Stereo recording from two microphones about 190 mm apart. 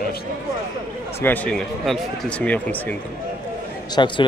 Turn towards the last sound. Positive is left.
turn(degrees=25)  # may be behind; listen again after turning